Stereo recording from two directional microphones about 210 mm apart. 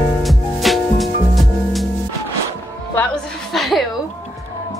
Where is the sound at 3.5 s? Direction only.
Centre (ahead or behind).